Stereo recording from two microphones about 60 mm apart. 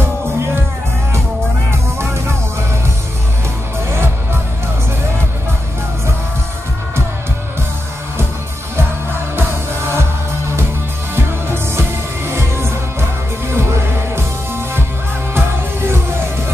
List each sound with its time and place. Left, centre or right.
3.9 s music: right
9.4 s music: right
11.1 s music: right
15.3 s music: right